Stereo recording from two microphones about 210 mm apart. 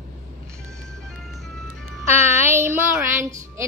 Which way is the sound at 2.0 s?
15° right (ahead or behind).